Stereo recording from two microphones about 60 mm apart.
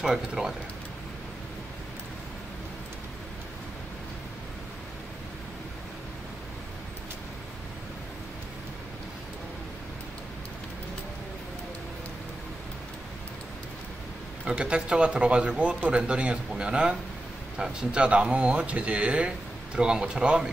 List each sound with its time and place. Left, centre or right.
0.0 s speech: centre
14.4 s speech: centre